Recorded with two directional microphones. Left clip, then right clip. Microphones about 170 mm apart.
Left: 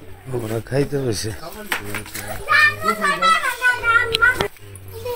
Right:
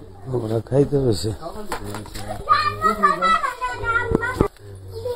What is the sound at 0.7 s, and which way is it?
Speech, 20° right (ahead or behind).